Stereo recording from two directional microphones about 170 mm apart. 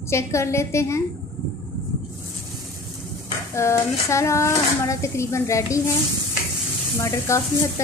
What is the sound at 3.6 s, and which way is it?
A woman's voice, 15° left (ahead or behind).